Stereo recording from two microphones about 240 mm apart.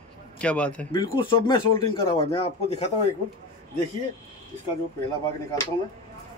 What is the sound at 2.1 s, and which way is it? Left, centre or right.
Speech, left.